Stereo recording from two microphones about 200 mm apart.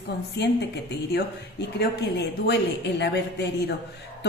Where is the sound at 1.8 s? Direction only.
55° left (ahead or behind).